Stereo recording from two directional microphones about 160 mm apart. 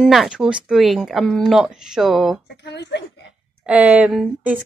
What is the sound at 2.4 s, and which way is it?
Speech, 90° left.